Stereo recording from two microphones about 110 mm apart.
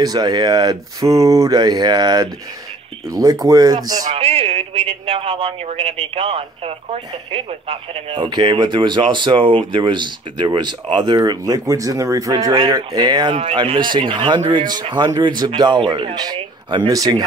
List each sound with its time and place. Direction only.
0.0 s speech: 35° right (ahead or behind)
4.1 s speech: 70° right (ahead or behind)
8.2 s speech: 45° right (ahead or behind)
16.8 s speech: 30° right (ahead or behind)